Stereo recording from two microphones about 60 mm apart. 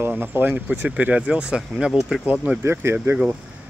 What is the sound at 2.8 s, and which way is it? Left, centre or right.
Speech, right.